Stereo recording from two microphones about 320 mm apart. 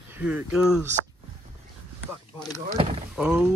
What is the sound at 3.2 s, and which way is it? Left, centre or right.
Speech, centre.